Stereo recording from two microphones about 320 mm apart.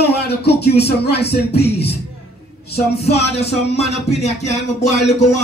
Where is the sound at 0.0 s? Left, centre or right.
Left.